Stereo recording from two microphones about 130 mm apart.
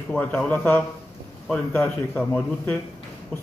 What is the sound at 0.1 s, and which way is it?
A man's voice, 10° left (ahead or behind).